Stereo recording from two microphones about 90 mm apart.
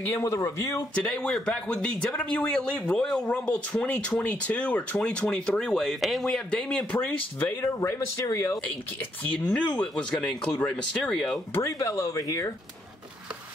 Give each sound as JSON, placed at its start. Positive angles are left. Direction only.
{"t": 0.2, "sound": "speech", "side_deg": 35}
{"t": 0.9, "sound": "speech", "side_deg": 10}
{"t": 9.5, "sound": "speech", "side_deg": 15}
{"t": 11.5, "sound": "speech", "side_deg": 35}